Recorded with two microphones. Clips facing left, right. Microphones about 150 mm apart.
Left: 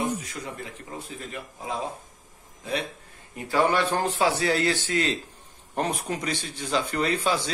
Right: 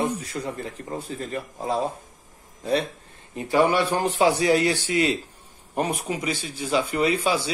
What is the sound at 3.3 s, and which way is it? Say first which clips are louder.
Speech: right 3 dB; 15° right (ahead or behind).